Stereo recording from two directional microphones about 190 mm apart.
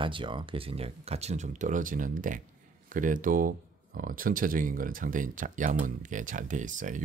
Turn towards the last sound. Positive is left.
turn(degrees=-40)  # may be behind; listen again after turning